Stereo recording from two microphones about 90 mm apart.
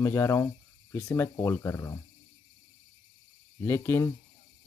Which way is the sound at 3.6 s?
25° left (ahead or behind).